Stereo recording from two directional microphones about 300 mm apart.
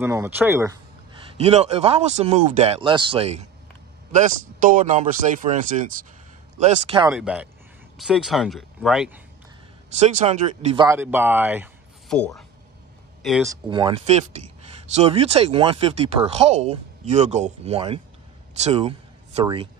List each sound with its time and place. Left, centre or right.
0.0 s speech: centre
1.3 s speech: right
7.1 s speech: centre
9.9 s speech: right; by 13.5 s centre
13.7 s speech: centre